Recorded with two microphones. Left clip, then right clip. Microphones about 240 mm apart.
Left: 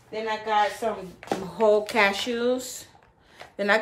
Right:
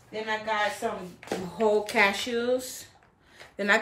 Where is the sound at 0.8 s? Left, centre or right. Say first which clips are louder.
Left 4 dB; centre.